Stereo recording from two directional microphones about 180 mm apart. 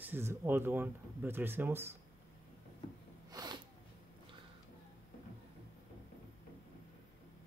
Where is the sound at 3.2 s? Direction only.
25° right (ahead or behind).